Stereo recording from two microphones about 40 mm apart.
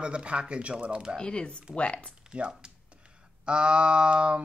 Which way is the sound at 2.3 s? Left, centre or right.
Right.